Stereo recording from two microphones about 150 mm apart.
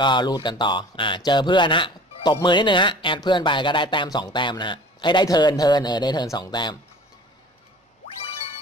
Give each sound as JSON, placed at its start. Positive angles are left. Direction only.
{"t": 0.0, "sound": "speech", "side_deg": 30}